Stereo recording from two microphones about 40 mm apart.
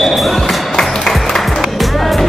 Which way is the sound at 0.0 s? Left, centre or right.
Centre.